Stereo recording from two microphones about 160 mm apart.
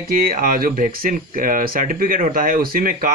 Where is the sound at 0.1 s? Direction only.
65° right (ahead or behind).